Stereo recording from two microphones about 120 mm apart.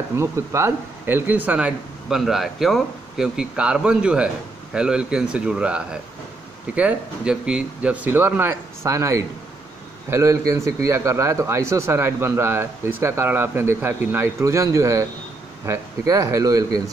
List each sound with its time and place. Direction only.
0.1 s a man's voice: 20° right (ahead or behind)